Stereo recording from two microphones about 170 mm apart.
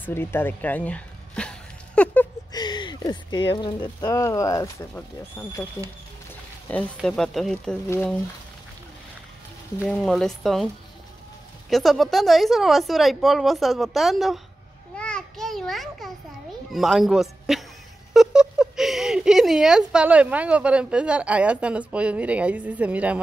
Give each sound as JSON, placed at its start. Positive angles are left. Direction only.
{"t": 0.0, "sound": "speech", "side_deg": 15}
{"t": 2.5, "sound": "speech", "side_deg": 25}
{"t": 6.7, "sound": "speech", "side_deg": 5}
{"t": 9.8, "sound": "speech", "side_deg": 5}
{"t": 11.7, "sound": "speech", "side_deg": 0}
{"t": 15.0, "sound": "a sound", "side_deg": 5}
{"t": 16.7, "sound": "a man's voice", "side_deg": 0}